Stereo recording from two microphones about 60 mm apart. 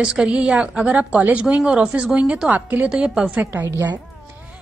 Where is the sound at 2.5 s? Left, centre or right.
Right.